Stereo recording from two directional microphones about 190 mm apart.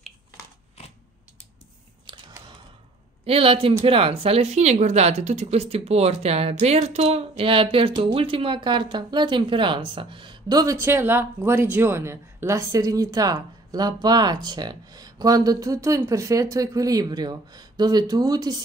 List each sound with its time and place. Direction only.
2.1 s camera: 25° right (ahead or behind)
3.3 s speech: 30° right (ahead or behind)